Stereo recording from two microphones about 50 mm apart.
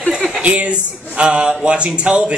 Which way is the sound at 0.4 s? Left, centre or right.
Right.